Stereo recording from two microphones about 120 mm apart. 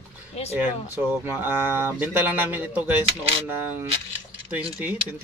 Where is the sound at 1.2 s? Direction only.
15° right (ahead or behind).